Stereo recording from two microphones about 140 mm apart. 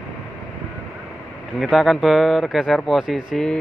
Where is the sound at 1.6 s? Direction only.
Centre (ahead or behind).